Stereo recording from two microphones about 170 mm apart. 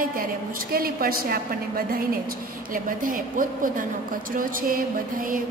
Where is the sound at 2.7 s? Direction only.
55° right (ahead or behind).